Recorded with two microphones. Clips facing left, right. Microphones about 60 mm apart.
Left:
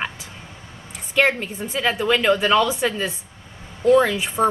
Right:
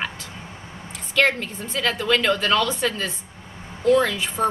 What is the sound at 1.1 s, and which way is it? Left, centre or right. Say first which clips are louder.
A woman's voice: left 1 dB; centre.